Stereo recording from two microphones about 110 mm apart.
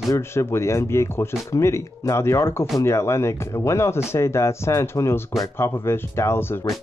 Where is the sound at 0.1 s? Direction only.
25° left (ahead or behind).